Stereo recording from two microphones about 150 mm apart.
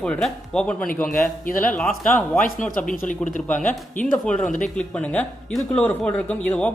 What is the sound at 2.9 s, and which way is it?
Speech, 60° left (ahead or behind).